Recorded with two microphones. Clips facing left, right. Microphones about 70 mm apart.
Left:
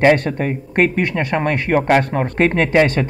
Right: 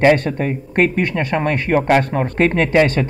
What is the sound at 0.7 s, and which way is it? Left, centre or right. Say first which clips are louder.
Speech: even; left.